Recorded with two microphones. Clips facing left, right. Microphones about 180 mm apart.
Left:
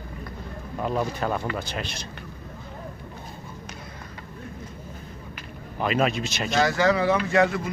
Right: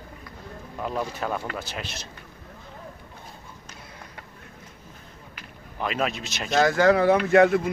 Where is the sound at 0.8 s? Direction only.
Centre (ahead or behind).